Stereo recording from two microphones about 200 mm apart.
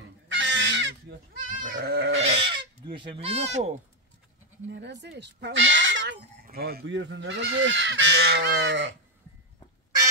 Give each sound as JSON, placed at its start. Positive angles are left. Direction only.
{"t": 0.3, "sound": "goose", "side_deg": -65}
{"t": 1.3, "sound": "goat", "side_deg": -40}
{"t": 2.4, "sound": "fowl", "side_deg": -25}
{"t": 4.6, "sound": "goose", "side_deg": -60}
{"t": 6.4, "sound": "goose", "side_deg": -50}